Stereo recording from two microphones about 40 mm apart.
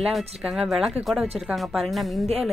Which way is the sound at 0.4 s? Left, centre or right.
Centre.